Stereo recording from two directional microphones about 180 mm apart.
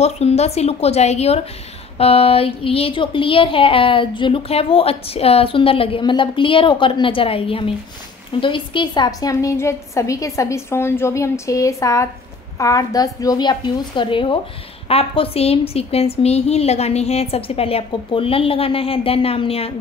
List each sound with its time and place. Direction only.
0.0 s a woman's voice: 35° left (ahead or behind)